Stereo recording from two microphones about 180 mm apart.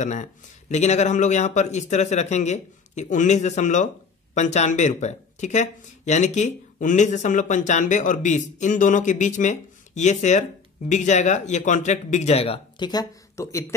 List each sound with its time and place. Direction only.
0.0 s speech: 40° left (ahead or behind); by 13.7 s 15° left (ahead or behind)